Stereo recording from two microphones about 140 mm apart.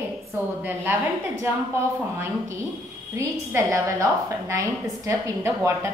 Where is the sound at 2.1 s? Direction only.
20° right (ahead or behind).